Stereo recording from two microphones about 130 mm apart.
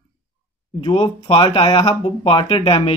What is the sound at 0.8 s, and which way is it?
Speech, 40° left (ahead or behind).